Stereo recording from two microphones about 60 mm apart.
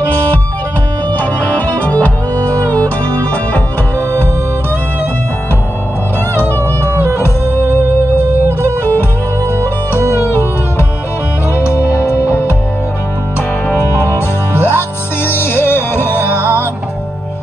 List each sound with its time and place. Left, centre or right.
1.1 s music: left
6.3 s music: left
9.6 s music: left
14.0 s music: left